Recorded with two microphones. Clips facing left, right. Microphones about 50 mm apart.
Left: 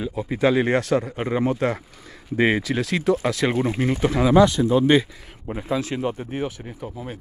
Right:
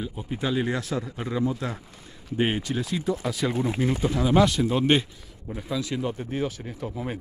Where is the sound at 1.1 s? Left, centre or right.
Left.